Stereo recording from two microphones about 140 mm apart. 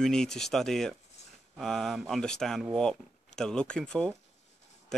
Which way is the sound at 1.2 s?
50° left (ahead or behind).